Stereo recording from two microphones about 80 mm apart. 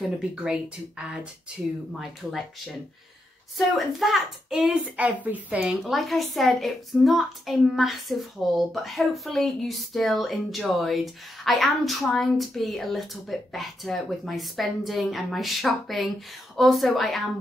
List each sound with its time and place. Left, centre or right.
0.4 s a child's voice: centre
4.9 s speech: centre
5.9 s a child's voice: centre